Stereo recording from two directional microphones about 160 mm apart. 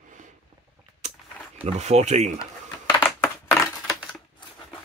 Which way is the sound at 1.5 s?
40° right (ahead or behind).